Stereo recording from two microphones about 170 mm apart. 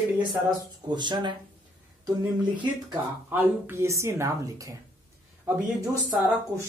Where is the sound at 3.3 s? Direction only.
10° right (ahead or behind).